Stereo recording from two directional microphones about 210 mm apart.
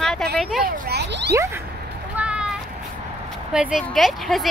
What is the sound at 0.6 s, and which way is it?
Speech, 50° right (ahead or behind).